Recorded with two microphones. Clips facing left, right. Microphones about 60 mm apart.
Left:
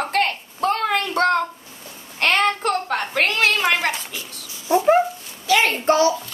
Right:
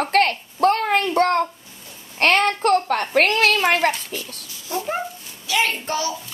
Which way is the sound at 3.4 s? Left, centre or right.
Left.